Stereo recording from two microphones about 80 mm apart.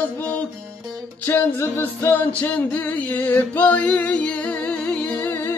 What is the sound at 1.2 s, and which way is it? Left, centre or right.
Music, left.